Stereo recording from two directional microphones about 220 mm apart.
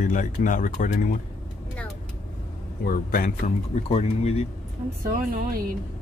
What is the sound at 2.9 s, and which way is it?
Speech, 40° left (ahead or behind).